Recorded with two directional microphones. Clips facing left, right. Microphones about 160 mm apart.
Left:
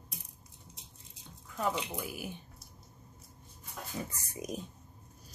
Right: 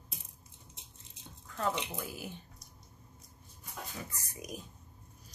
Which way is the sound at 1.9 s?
15° left (ahead or behind).